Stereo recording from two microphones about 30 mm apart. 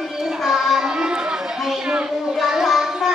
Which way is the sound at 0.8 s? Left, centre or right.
Right.